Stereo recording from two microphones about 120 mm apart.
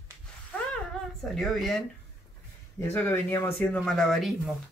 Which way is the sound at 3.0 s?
20° left (ahead or behind).